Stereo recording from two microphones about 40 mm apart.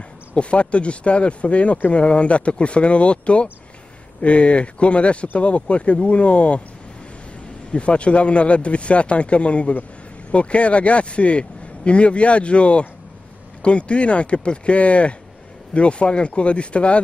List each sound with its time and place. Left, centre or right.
0.4 s speech: left
7.7 s speech: left